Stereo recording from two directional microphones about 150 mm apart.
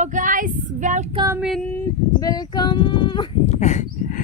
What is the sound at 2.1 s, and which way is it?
Speech, 25° left (ahead or behind).